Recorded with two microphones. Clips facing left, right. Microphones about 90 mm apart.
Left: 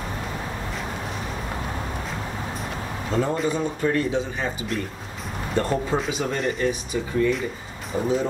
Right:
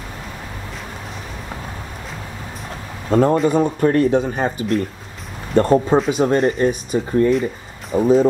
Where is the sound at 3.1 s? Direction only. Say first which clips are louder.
Right 9 dB; 55° right (ahead or behind).